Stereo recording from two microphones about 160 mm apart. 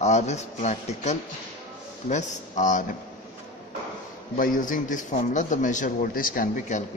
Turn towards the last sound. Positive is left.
turn(degrees=55)  # may be behind; listen again after turning